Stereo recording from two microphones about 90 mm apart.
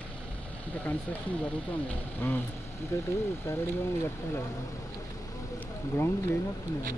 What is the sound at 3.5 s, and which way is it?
Speech, 30° left (ahead or behind).